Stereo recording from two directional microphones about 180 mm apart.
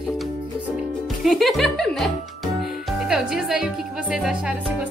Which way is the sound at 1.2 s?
Centre (ahead or behind).